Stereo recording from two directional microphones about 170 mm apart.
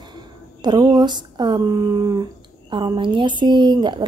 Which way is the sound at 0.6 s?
25° right (ahead or behind).